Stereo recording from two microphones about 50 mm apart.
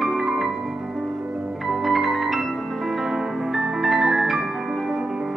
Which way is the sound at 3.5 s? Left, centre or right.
Centre.